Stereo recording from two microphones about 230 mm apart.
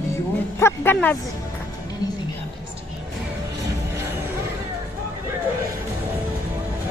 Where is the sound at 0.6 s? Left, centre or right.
Centre.